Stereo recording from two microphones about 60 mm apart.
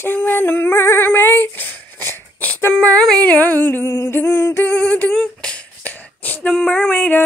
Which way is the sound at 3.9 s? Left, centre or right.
Left.